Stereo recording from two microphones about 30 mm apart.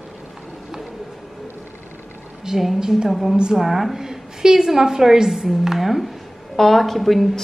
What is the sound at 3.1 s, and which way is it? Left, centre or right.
Speech, centre.